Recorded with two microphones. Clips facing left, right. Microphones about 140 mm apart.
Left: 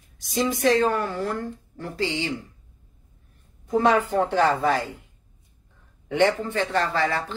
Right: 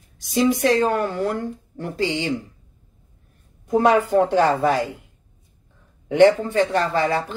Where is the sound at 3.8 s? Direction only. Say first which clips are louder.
Right 4 dB; 10° right (ahead or behind).